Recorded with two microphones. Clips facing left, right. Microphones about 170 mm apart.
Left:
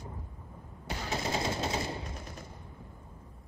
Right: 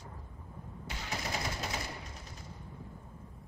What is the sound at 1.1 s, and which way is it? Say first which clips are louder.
Machine gun: left 6 dB; 25° left (ahead or behind).